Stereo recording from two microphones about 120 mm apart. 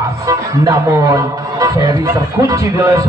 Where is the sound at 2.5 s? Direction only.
25° right (ahead or behind).